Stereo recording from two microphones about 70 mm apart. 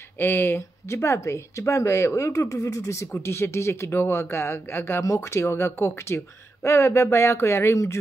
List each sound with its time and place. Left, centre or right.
0.2 s speech: left
0.6 s speech: left
5.0 s speech: left